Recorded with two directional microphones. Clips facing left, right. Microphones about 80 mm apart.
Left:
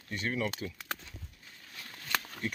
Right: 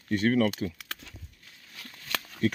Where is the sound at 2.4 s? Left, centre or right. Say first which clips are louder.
Right 15 dB; right.